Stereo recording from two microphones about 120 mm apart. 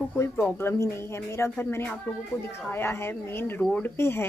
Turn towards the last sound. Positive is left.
turn(degrees=20)  # may be behind; listen again after turning